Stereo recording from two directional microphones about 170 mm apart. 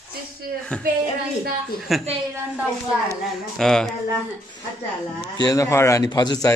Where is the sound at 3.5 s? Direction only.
Centre (ahead or behind).